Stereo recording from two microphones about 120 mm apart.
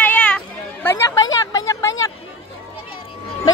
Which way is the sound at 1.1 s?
25° left (ahead or behind).